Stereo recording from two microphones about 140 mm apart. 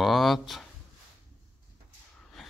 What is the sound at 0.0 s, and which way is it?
Speech, centre (ahead or behind).